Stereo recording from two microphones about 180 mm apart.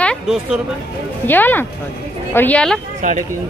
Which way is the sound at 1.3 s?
10° left (ahead or behind).